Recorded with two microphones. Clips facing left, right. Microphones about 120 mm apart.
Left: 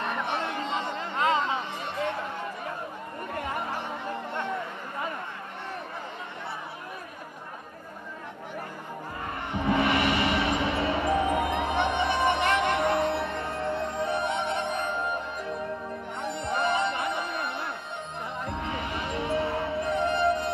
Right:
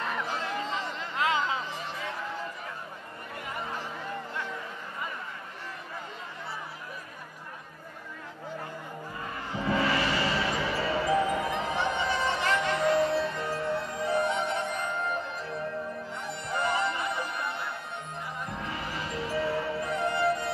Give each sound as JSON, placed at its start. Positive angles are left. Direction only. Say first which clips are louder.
{"t": 0.0, "sound": "a sound", "louder": "left 3 dB", "side_deg": 25}
{"t": 9.2, "sound": "vehicle", "louder": "left 3 dB", "side_deg": 65}
{"t": 9.6, "sound": "music", "louder": "left 3 dB", "side_deg": 25}
{"t": 11.5, "sound": "music", "louder": "left 3 dB", "side_deg": 60}
{"t": 12.4, "sound": "music", "louder": "left 3 dB", "side_deg": 25}
{"t": 12.7, "sound": "music", "louder": "even", "side_deg": 60}
{"t": 13.7, "sound": "music", "louder": "even", "side_deg": 25}
{"t": 16.2, "sound": "music", "louder": "left 4 dB", "side_deg": 25}
{"t": 18.7, "sound": "music", "louder": "left 3 dB", "side_deg": 25}